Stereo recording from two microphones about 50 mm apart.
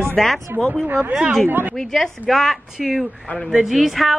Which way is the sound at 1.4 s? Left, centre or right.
Right.